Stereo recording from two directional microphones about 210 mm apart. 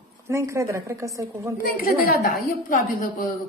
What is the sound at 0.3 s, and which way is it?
A woman's voice, 15° right (ahead or behind).